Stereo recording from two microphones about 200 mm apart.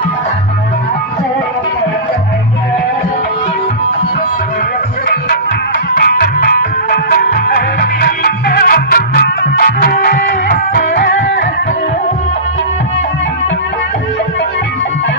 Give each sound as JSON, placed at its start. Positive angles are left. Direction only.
{"t": 5.9, "sound": "music", "side_deg": 50}